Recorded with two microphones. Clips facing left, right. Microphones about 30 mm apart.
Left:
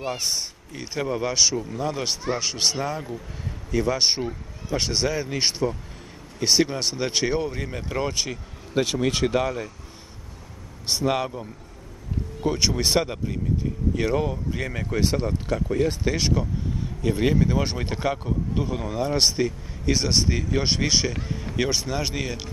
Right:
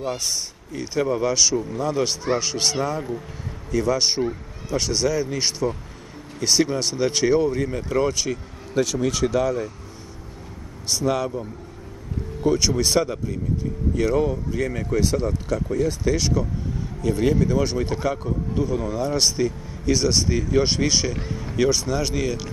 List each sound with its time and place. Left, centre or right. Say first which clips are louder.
0.1 s speech: even; left
10.9 s speech: right 1 dB; left
12.4 s speech: right 3 dB; centre